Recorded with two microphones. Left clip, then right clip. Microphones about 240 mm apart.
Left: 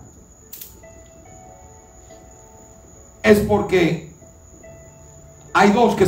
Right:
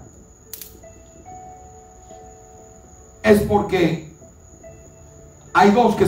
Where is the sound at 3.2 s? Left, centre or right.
Centre.